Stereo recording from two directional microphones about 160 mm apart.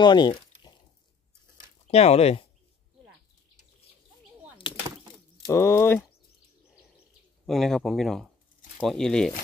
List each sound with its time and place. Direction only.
0.0 s a sound: 30° left (ahead or behind)
1.9 s speech: 40° left (ahead or behind)
5.5 s speech: 15° left (ahead or behind)
7.4 s speech: centre (ahead or behind)